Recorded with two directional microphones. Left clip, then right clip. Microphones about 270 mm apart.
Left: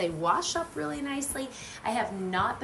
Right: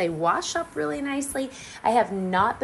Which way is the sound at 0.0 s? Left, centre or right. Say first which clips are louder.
Right 4 dB; centre.